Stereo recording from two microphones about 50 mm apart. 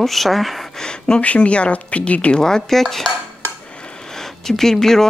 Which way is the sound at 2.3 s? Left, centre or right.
Centre.